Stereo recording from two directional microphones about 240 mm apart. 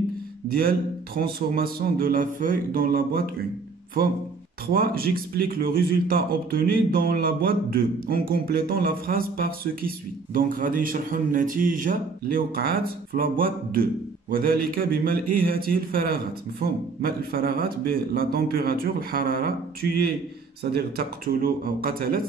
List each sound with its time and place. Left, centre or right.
0.6 s speech: right
4.7 s speech: right
20.9 s speech: right